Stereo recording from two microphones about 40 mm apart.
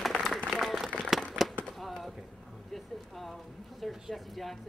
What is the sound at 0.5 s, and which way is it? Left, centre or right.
Applause, centre.